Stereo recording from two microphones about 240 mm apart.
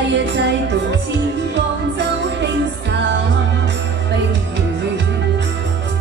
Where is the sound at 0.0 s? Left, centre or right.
Right.